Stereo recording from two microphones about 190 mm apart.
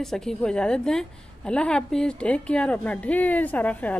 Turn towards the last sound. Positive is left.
turn(degrees=10)  # may be behind; listen again after turning